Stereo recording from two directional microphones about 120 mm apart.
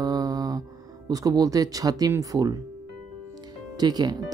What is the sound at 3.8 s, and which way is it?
Speech, 35° right (ahead or behind).